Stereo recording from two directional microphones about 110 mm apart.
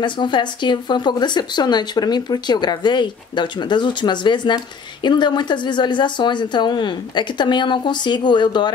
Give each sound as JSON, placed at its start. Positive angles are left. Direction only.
{"t": 0.0, "sound": "speech", "side_deg": 45}